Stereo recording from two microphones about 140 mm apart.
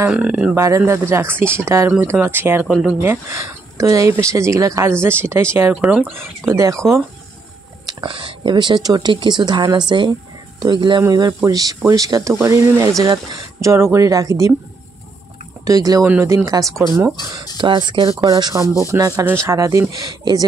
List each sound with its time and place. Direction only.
0.1 s speech: 10° right (ahead or behind)
0.6 s speech: 20° right (ahead or behind)
3.0 s speech: 20° right (ahead or behind)
6.4 s speech: 20° right (ahead or behind)
7.8 s speech: 35° right (ahead or behind)
15.6 s speech: 25° right (ahead or behind)